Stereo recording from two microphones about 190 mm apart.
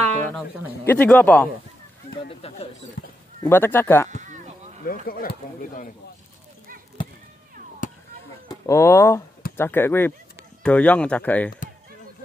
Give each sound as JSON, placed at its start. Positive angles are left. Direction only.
{"t": 0.8, "sound": "speech", "side_deg": 10}
{"t": 2.2, "sound": "speech", "side_deg": 30}
{"t": 3.4, "sound": "speech", "side_deg": 10}
{"t": 4.8, "sound": "speech", "side_deg": 50}
{"t": 7.8, "sound": "a sound", "side_deg": 45}
{"t": 8.5, "sound": "speech", "side_deg": 15}